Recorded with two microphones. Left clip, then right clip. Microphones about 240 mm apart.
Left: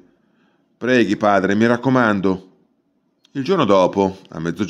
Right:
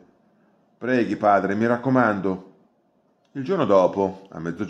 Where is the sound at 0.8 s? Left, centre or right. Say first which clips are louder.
Left 4 dB; left.